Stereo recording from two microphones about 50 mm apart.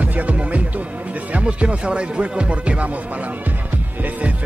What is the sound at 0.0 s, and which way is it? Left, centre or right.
Music, right.